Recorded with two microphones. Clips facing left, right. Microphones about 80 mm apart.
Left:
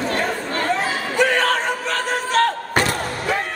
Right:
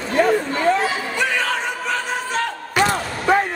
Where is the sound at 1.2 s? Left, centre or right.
Left.